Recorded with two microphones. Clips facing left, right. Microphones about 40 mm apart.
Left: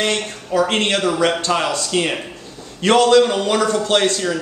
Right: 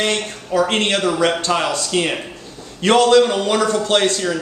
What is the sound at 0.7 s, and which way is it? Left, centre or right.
Speech, centre.